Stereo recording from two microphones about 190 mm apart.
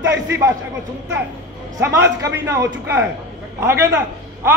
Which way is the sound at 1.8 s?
15° right (ahead or behind).